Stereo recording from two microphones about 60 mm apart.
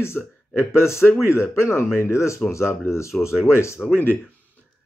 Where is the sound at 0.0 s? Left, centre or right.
Left.